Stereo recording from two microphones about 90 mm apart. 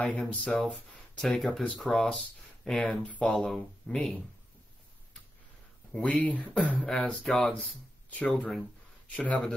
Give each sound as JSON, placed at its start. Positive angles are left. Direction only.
{"t": 0.0, "sound": "speech", "side_deg": 15}
{"t": 1.1, "sound": "speech", "side_deg": 0}
{"t": 5.9, "sound": "speech", "side_deg": 15}
{"t": 6.9, "sound": "speech", "side_deg": 5}